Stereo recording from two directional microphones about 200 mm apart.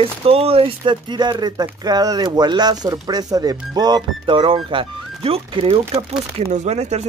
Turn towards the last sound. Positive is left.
turn(degrees=-35)  # may be behind; listen again after turning